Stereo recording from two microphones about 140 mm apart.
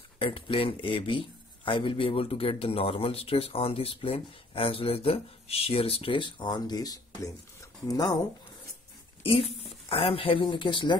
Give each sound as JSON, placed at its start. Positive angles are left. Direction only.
{"t": 0.2, "sound": "speech", "side_deg": 40}
{"t": 9.2, "sound": "speech", "side_deg": 45}